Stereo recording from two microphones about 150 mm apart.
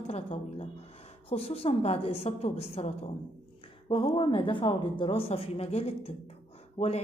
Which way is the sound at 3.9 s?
35° left (ahead or behind).